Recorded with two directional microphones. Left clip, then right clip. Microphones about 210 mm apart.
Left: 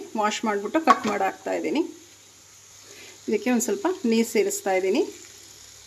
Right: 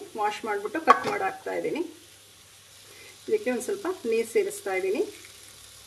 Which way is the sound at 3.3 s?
45° left (ahead or behind).